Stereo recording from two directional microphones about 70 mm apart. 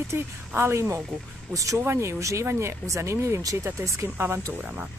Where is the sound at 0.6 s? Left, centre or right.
Right.